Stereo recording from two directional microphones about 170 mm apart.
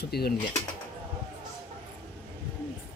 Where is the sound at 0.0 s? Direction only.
70° left (ahead or behind).